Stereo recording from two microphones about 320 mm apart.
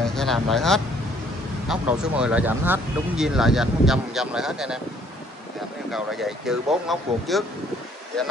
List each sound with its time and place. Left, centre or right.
0.0 s speech: centre
5.9 s speech: centre